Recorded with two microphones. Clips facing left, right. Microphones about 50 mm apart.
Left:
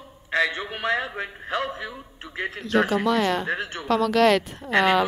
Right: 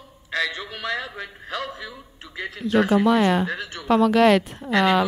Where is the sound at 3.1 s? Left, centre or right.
Centre.